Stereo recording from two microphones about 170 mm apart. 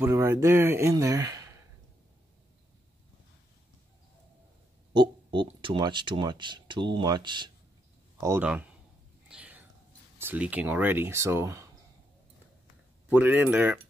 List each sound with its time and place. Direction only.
0.0 s speech: 15° right (ahead or behind)
4.9 s speech: 30° right (ahead or behind)
8.2 s speech: 15° right (ahead or behind)
9.3 s whispering: 10° right (ahead or behind)
10.1 s speech: 10° right (ahead or behind)
13.1 s speech: 10° right (ahead or behind)